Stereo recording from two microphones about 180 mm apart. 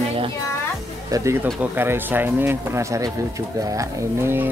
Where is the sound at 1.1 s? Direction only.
20° right (ahead or behind).